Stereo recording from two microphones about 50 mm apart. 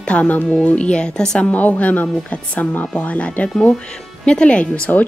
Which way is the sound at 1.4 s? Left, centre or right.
Left.